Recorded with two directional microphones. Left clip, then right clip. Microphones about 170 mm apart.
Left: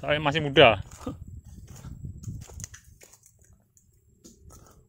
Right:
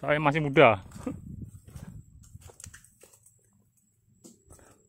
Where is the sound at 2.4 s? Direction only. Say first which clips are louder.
Left 1 dB; 75° left (ahead or behind).